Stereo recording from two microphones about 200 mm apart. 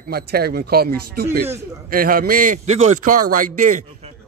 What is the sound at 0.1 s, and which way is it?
A man's voice, 50° right (ahead or behind).